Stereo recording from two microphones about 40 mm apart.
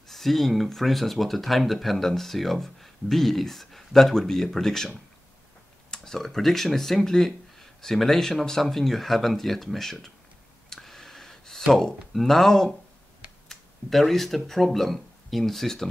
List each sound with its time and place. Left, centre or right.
0.1 s speech: centre
10.7 s a sound: centre
11.7 s speech: centre